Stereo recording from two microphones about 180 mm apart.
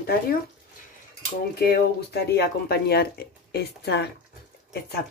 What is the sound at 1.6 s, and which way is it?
Speech, 60° left (ahead or behind).